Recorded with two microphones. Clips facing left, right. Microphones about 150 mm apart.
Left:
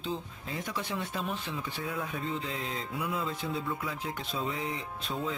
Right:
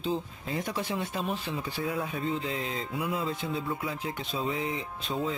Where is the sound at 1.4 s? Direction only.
35° right (ahead or behind).